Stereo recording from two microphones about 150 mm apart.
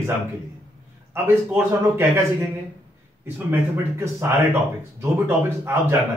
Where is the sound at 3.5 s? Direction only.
20° right (ahead or behind).